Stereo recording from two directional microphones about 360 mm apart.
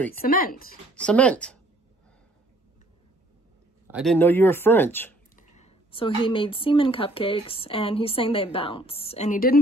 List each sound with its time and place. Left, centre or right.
0.2 s speech: left
1.0 s speech: centre
3.9 s speech: centre
5.3 s a woman's voice: centre